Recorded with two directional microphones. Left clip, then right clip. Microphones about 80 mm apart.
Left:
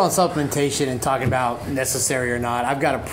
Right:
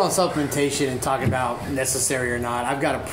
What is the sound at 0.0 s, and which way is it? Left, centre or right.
Speech, left.